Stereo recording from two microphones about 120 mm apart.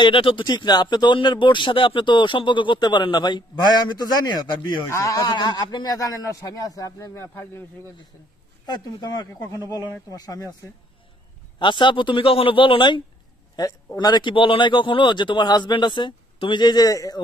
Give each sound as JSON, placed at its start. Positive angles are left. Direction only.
{"t": 0.0, "sound": "speech", "side_deg": 45}
{"t": 8.6, "sound": "speech", "side_deg": 35}
{"t": 11.6, "sound": "speech", "side_deg": 40}
{"t": 13.6, "sound": "speech", "side_deg": 35}